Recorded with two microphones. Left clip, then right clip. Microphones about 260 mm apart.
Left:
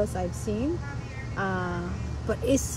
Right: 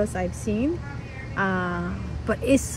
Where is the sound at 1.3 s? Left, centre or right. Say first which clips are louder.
Right 5 dB; right.